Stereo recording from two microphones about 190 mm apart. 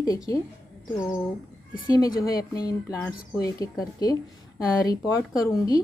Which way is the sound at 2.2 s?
20° left (ahead or behind).